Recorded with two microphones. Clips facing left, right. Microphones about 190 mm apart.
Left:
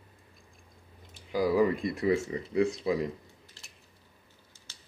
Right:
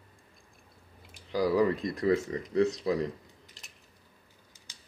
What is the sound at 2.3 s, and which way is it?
Speech, 20° left (ahead or behind).